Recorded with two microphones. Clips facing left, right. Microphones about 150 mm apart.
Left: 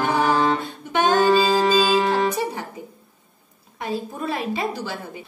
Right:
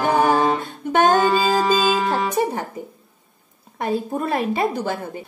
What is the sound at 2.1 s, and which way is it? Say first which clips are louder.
Music: right 1 dB; 50° right (ahead or behind).